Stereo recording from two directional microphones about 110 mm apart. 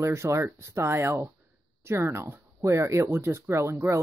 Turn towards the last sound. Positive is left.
turn(degrees=-25)  # may be behind; listen again after turning